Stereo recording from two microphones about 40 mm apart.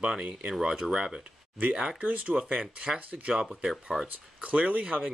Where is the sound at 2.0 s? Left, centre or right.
Right.